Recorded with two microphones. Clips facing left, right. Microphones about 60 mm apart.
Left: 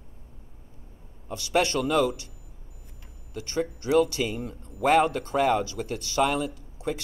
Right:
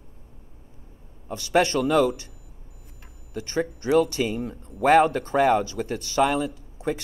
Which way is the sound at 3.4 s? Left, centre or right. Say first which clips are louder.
Right 2 dB; right.